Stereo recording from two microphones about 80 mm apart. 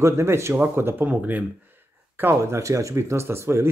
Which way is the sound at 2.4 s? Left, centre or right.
Right.